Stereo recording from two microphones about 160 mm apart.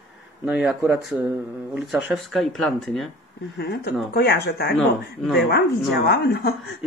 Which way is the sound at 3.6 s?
90° left.